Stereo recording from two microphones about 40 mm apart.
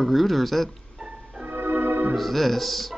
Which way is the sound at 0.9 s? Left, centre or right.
Centre.